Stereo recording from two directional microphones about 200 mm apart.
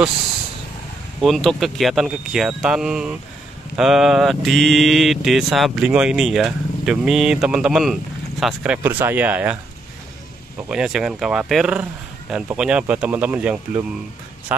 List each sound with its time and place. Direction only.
1.2 s mantra: centre (ahead or behind)
8.8 s speech: 10° right (ahead or behind)
10.7 s mantra: 5° right (ahead or behind)